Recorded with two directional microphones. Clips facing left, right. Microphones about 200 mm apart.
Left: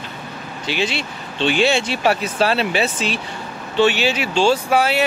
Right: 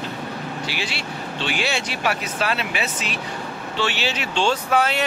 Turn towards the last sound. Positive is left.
turn(degrees=10)  # may be behind; listen again after turning